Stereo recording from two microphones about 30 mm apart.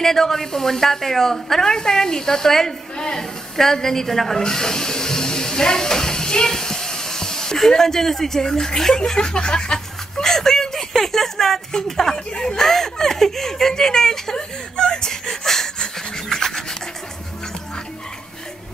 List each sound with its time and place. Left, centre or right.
0.0 s a woman's voice: centre
4.4 s a sound: centre
10.2 s a sound: centre
11.0 s a woman's voice: centre
14.8 s whimper: left
15.0 s rub: centre